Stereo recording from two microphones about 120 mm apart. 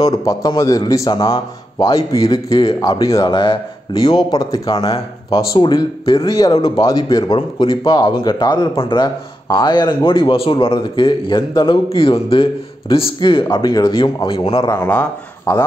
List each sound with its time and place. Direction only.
0.0 s a man's voice: 30° left (ahead or behind)
3.3 s speech: 45° left (ahead or behind)
5.6 s speech: 40° left (ahead or behind)
6.2 s speech: 30° left (ahead or behind); by 14.7 s 50° left (ahead or behind)
14.9 s speech: 15° left (ahead or behind)